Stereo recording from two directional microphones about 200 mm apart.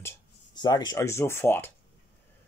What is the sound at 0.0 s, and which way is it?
Speech, 15° left (ahead or behind).